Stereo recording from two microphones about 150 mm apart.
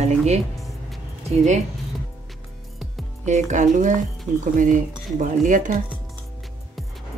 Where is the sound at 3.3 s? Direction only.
50° right (ahead or behind).